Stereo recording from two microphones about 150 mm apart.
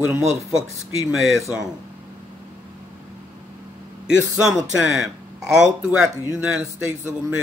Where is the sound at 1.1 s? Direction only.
Centre (ahead or behind).